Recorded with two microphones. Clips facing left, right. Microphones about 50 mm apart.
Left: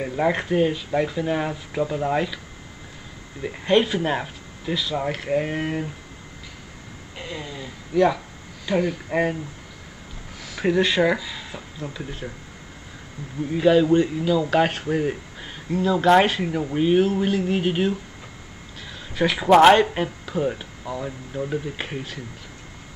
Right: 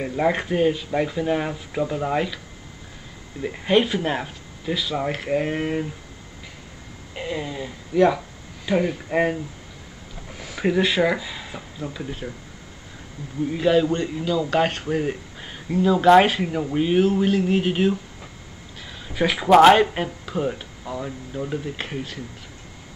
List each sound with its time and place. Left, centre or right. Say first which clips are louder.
0.0 s speech: even; centre
3.4 s speech: even; centre
7.2 s speech: right 5 dB; centre
10.6 s speech: even; centre
11.1 s a sound: right 1 dB; centre
11.8 s speech: right 2 dB; centre
13.5 s speech: left 3 dB; centre